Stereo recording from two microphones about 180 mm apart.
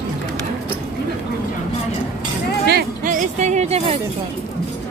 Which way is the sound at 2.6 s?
60° right (ahead or behind).